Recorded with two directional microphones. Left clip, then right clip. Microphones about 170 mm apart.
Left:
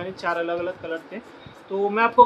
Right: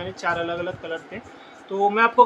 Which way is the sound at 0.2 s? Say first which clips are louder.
Even; 10° right (ahead or behind).